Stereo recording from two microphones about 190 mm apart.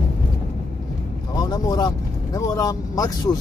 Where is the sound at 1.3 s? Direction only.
20° left (ahead or behind).